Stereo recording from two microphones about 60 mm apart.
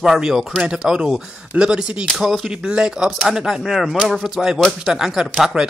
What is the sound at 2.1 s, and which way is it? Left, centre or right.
Speech, centre.